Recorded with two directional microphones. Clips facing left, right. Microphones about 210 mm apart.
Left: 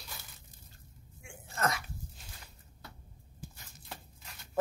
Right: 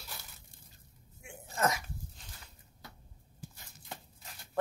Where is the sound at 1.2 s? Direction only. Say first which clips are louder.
Right 2 dB; 20° right (ahead or behind).